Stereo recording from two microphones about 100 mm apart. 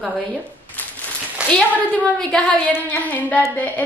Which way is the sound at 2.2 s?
10° left (ahead or behind).